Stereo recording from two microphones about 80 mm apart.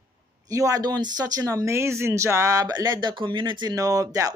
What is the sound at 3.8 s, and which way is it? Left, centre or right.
Speech, right.